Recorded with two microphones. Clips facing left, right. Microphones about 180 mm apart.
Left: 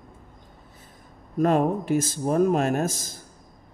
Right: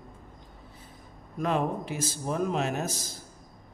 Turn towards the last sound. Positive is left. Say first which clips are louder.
# left 7 dB
turn(degrees=50)  # may be behind; listen again after turning